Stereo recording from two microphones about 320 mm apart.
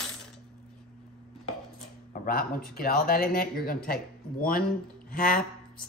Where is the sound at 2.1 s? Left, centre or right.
Left.